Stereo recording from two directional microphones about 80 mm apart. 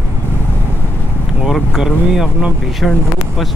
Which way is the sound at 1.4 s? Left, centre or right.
Centre.